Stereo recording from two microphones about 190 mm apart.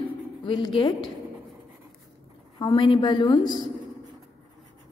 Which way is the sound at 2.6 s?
25° left (ahead or behind).